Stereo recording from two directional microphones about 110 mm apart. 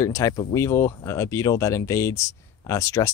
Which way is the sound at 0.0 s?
30° left (ahead or behind).